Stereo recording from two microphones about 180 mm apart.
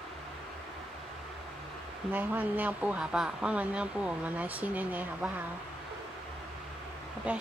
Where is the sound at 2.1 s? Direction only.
10° right (ahead or behind).